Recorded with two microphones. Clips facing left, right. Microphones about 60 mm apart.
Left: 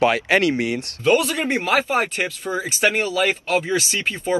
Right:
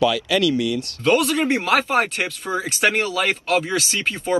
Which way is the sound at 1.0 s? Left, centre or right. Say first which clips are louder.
Even; centre.